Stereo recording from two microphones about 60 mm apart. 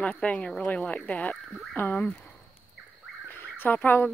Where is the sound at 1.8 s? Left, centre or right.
Left.